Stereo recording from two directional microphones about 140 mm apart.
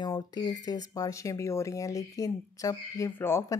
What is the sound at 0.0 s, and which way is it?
Speech, 30° left (ahead or behind).